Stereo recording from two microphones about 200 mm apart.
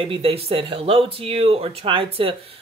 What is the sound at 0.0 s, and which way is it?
Speech, 30° right (ahead or behind).